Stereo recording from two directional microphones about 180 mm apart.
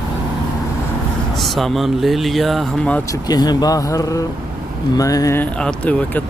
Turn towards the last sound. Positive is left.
turn(degrees=5)  # may be behind; listen again after turning